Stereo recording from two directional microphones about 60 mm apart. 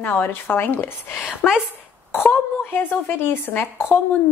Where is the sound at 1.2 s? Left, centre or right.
Centre.